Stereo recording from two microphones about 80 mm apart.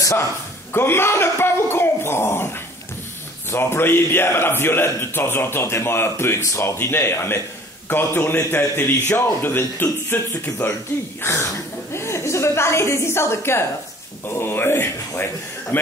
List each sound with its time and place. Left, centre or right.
0.7 s a man's voice: left
10.9 s speech: centre
11.2 s a man's voice: left